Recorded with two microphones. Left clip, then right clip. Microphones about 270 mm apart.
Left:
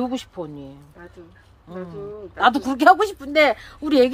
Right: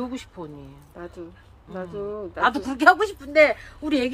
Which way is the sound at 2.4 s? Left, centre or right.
Left.